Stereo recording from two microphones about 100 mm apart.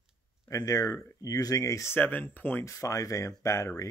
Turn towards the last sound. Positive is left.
turn(degrees=35)  # may be behind; listen again after turning